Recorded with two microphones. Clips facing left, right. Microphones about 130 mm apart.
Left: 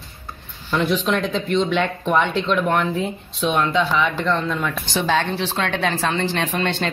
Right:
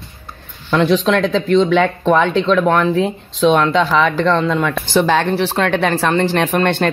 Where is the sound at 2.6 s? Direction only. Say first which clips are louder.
Right 6 dB; 90° right.